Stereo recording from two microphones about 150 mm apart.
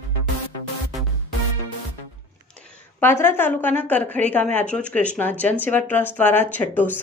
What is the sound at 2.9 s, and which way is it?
Speech, 15° left (ahead or behind).